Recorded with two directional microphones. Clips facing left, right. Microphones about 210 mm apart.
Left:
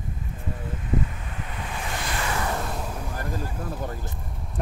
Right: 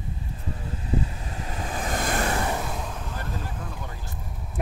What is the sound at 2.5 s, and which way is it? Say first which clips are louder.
Vehicle: even; 5° right (ahead or behind).